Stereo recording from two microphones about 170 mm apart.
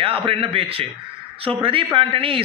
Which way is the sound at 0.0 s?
30° right (ahead or behind).